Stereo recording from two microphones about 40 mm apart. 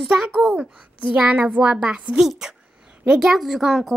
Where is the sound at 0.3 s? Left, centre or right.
Centre.